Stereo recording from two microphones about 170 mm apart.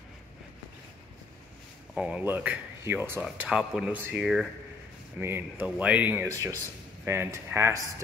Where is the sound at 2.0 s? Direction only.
5° right (ahead or behind).